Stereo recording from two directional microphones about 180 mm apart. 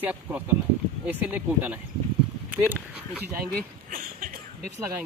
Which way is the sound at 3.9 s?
50° right (ahead or behind).